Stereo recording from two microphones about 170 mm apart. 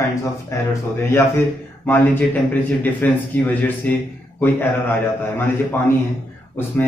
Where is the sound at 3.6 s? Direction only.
10° left (ahead or behind).